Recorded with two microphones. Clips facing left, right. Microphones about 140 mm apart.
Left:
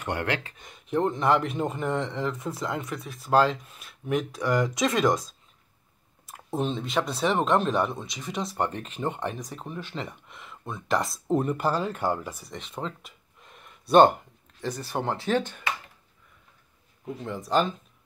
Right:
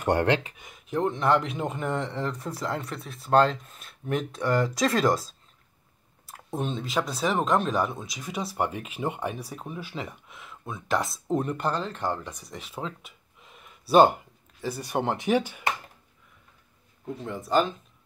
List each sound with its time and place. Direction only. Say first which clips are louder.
0.0 s speech: right 7 dB; 40° right (ahead or behind)
0.3 s speech: right 5 dB; 15° right (ahead or behind)
0.7 s speech: left 2 dB; centre (ahead or behind)
14.9 s speech: right 2 dB; 20° right (ahead or behind)
17.0 s speech: even; centre (ahead or behind)